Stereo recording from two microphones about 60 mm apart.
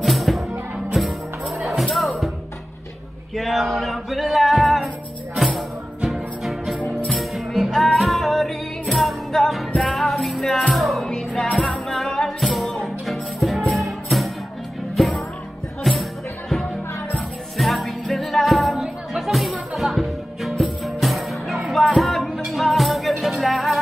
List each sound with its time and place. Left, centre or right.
0.0 s music: centre
3.3 s male singing: centre
5.3 s music: centre
11.4 s music: left
11.9 s music: centre